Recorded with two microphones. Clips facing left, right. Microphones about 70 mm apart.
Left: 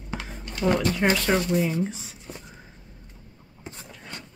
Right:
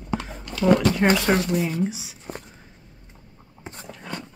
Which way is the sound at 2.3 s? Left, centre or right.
Right.